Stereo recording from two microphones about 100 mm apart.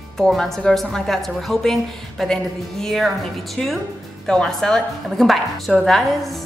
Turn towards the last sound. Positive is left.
turn(degrees=0)  # may be behind; listen again after turning